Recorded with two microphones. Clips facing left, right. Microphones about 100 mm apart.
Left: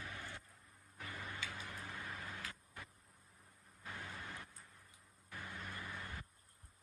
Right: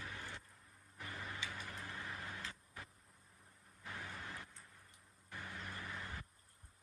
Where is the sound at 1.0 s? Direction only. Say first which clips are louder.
Even; centre (ahead or behind).